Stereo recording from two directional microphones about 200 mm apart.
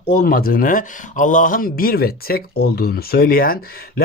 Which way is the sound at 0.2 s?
45° left (ahead or behind).